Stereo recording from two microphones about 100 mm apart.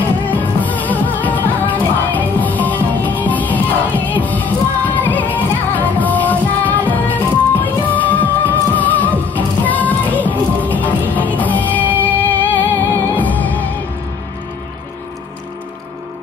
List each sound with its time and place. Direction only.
0.3 s music: 15° left (ahead or behind)